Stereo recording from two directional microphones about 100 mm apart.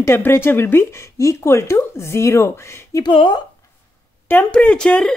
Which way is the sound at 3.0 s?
50° left (ahead or behind).